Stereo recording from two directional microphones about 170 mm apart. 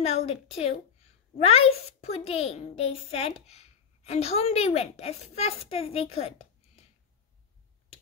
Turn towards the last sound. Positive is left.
turn(degrees=35)  # may be behind; listen again after turning